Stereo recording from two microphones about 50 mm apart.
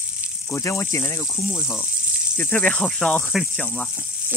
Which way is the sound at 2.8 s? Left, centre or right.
Centre.